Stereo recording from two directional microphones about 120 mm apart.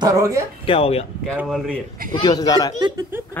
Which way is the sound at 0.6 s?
50° left (ahead or behind).